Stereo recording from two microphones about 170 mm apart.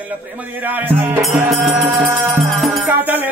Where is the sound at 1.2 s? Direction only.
Centre (ahead or behind).